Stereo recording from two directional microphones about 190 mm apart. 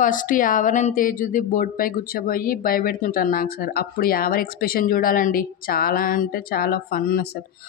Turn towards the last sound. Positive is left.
turn(degrees=55)  # may be behind; listen again after turning